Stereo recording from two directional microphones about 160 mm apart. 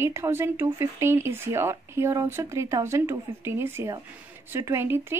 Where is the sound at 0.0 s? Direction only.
15° right (ahead or behind).